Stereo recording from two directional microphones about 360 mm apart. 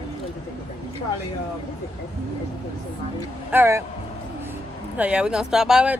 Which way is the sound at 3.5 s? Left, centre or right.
Centre.